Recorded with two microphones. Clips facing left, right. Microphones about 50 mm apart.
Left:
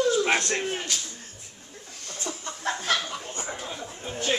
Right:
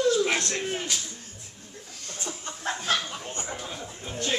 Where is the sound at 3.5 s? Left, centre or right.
Centre.